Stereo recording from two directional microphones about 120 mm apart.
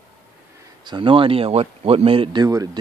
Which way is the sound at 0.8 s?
45° right (ahead or behind).